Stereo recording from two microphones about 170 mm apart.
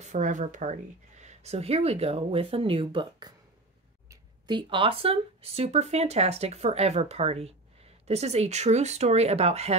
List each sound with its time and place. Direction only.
0.0 s speech: 45° right (ahead or behind)